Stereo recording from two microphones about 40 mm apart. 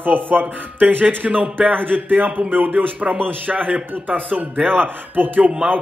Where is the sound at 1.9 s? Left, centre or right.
Right.